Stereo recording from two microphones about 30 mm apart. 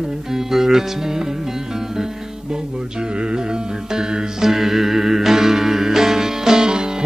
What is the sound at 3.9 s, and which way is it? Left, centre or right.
Music, centre.